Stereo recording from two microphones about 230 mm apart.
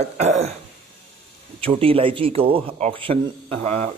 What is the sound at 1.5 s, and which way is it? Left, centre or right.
Speech, right.